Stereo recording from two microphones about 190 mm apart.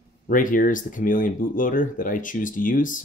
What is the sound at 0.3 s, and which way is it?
Speech, 45° left (ahead or behind).